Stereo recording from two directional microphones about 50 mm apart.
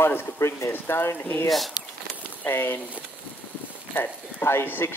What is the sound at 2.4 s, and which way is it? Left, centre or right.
Speech, left.